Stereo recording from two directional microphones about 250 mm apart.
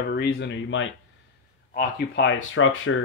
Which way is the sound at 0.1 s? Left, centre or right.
Left.